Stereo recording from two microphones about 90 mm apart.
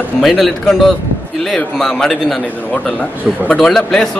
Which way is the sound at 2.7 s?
15° left (ahead or behind).